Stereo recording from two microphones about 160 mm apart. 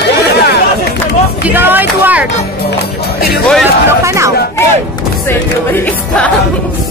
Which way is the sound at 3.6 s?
15° right (ahead or behind).